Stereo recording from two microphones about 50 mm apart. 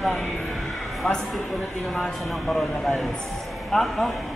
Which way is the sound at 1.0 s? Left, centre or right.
Centre.